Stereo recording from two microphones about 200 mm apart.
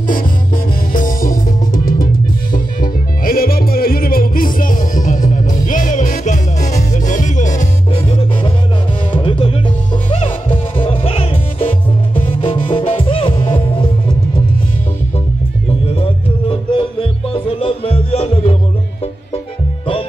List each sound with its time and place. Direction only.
0.9 s music: 40° left (ahead or behind)
15.9 s music: 30° left (ahead or behind)